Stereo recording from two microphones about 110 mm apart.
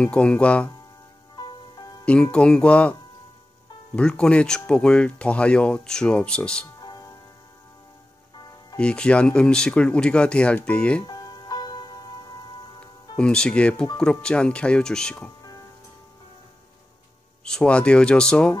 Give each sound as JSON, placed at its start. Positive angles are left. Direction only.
{"t": 0.0, "sound": "speech", "side_deg": 10}
{"t": 1.3, "sound": "music", "side_deg": 40}
{"t": 2.3, "sound": "speech", "side_deg": 10}
{"t": 6.8, "sound": "music", "side_deg": 40}
{"t": 8.7, "sound": "speech", "side_deg": 10}
{"t": 11.1, "sound": "music", "side_deg": 40}
{"t": 13.2, "sound": "speech", "side_deg": 10}
{"t": 17.5, "sound": "speech", "side_deg": 5}